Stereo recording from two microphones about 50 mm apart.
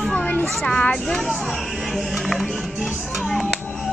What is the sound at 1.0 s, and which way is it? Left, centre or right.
Speech, centre.